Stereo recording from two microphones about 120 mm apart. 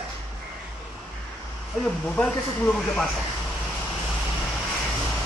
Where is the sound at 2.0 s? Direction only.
10° left (ahead or behind).